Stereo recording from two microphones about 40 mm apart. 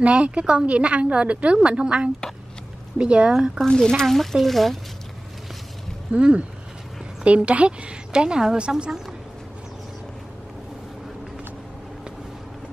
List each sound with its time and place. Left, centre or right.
0.0 s a woman's voice: right
3.5 s speech: centre
4.0 s speech: centre
6.1 s a woman's voice: right
8.1 s a woman's voice: centre